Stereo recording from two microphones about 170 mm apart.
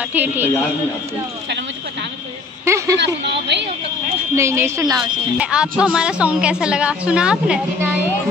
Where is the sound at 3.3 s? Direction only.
90° right.